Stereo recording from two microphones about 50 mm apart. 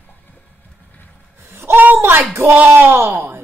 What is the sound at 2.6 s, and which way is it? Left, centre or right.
Speech, right.